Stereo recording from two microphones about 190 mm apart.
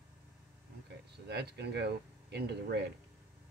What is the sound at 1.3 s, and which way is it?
Speech, 60° right (ahead or behind).